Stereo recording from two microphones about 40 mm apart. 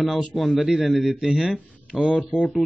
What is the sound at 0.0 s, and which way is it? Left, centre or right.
Speech, centre.